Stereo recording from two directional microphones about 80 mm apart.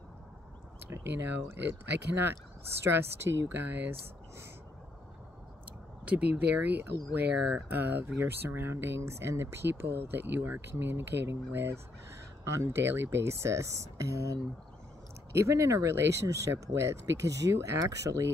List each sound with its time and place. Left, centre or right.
1.5 s speech: right
6.0 s speech: centre; by 18.3 s right